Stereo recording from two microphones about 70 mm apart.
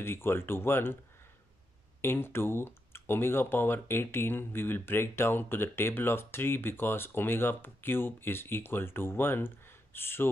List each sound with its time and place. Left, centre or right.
0.0 s speech: left
2.0 s speech: left